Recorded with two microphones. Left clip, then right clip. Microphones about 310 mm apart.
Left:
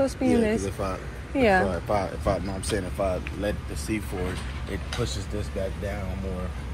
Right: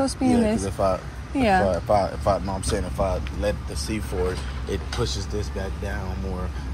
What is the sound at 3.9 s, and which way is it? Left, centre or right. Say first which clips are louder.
Speech: left 2 dB; right.